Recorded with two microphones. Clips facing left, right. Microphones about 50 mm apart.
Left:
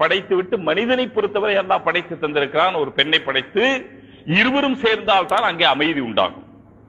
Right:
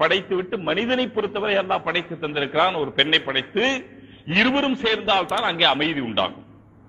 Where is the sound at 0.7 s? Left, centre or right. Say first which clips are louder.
Left 2 dB; centre.